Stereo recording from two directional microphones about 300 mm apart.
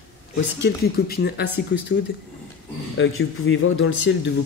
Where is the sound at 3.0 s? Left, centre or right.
Left.